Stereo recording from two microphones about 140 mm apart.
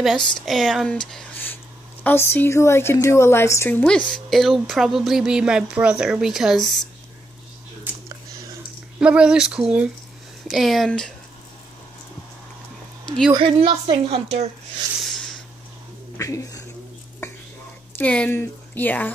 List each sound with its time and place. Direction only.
0.0 s speech: centre (ahead or behind); by 3.8 s 20° left (ahead or behind)
3.8 s speech: 5° left (ahead or behind)
7.9 s a sound: 10° right (ahead or behind)
9.0 s speech: 5° right (ahead or behind)
13.3 s a woman's voice: 40° right (ahead or behind)
15.0 s a sound: centre (ahead or behind)
16.2 s speech: 20° left (ahead or behind)
17.9 s speech: 10° left (ahead or behind)